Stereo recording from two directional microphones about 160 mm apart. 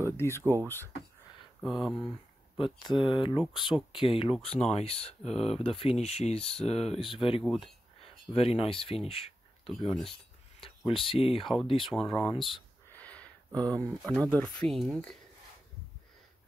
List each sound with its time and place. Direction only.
0.4 s speech: 20° right (ahead or behind)
1.6 s speech: centre (ahead or behind)
2.6 s speech: 30° left (ahead or behind)
7.4 s speech: centre (ahead or behind)
8.3 s speech: 35° left (ahead or behind)
9.7 s speech: centre (ahead or behind)
10.9 s speech: 35° left (ahead or behind)
12.9 s a sound: 10° left (ahead or behind)
13.8 s speech: centre (ahead or behind)